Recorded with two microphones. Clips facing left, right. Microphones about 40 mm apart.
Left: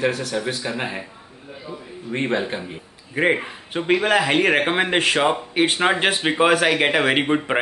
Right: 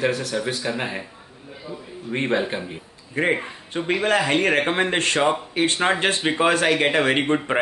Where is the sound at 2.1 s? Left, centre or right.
Centre.